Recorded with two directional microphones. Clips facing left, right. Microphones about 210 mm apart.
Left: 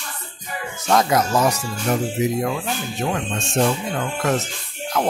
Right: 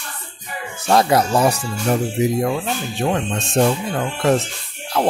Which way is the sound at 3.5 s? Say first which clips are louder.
Right 3 dB; 30° right (ahead or behind).